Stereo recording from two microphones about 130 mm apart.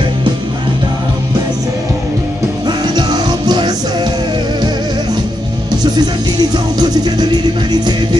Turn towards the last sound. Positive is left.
turn(degrees=-30)  # may be behind; listen again after turning